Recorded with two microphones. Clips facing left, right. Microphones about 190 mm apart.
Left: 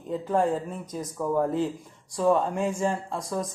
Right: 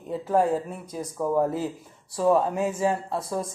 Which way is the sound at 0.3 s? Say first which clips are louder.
Right 2 dB; 10° right (ahead or behind).